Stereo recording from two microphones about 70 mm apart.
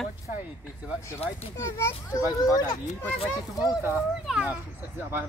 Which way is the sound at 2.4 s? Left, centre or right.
Left.